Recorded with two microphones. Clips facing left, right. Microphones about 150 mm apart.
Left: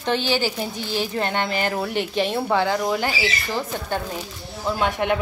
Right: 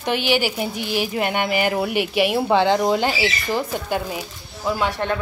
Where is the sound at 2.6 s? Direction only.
25° right (ahead or behind).